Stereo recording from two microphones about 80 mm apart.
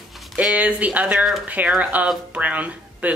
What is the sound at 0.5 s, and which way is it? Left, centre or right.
Speech, centre.